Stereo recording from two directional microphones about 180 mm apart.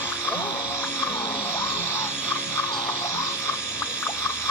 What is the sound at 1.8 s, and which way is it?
Music, 15° left (ahead or behind).